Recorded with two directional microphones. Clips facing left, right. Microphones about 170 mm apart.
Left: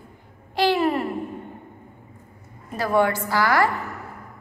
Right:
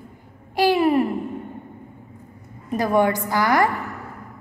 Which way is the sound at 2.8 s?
15° right (ahead or behind).